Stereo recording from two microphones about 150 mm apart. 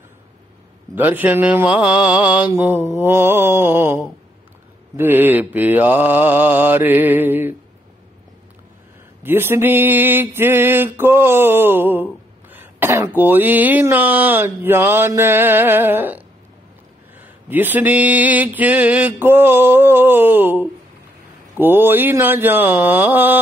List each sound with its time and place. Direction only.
0.9 s mantra: 10° right (ahead or behind)
9.2 s mantra: 15° right (ahead or behind)
17.5 s mantra: 10° right (ahead or behind)